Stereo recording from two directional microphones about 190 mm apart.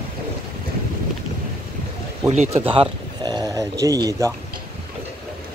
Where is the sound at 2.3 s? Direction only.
35° right (ahead or behind).